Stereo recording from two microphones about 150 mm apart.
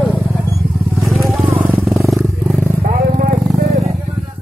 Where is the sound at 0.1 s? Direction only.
20° left (ahead or behind).